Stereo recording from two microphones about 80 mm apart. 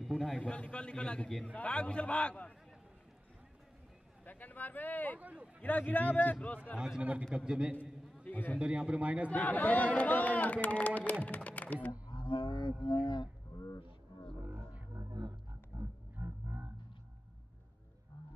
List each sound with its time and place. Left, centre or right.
0.0 s a man's voice: centre
0.4 s a man's voice: centre
4.2 s speech: left
5.2 s a man's voice: centre
5.6 s speech: left
7.0 s a man's voice: centre
8.2 s a man's voice: left
8.5 s a man's voice: centre
9.3 s speech: centre
12.1 s roaring cats: left
15.0 s a sound: right
15.7 s pig: centre
16.2 s music: right